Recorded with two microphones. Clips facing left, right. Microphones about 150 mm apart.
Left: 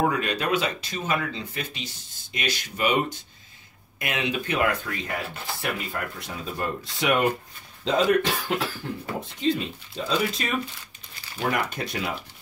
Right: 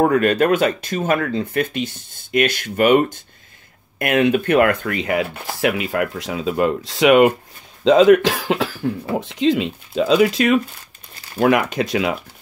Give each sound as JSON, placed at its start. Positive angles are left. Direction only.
{"t": 0.0, "sound": "speech", "side_deg": -55}